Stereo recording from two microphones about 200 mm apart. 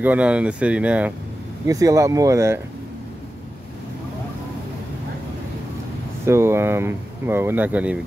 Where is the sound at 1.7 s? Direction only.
15° right (ahead or behind).